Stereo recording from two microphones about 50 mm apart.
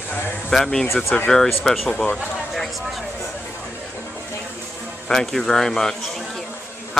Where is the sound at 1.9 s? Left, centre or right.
Centre.